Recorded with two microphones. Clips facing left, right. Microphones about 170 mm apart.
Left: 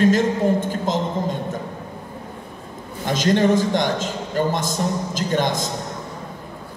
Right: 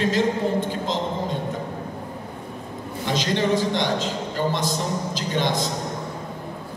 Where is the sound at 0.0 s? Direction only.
50° left (ahead or behind).